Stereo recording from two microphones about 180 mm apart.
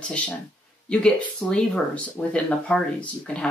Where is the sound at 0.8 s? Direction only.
5° left (ahead or behind).